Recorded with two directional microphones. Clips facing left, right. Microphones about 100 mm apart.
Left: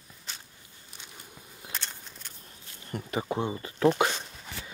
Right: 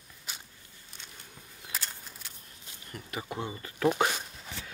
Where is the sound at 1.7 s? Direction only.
5° right (ahead or behind).